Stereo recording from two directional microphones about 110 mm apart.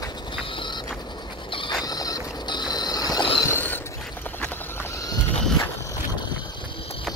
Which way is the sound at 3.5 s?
20° left (ahead or behind).